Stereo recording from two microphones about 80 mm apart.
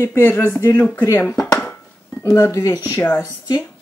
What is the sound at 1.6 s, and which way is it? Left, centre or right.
Dishes, left.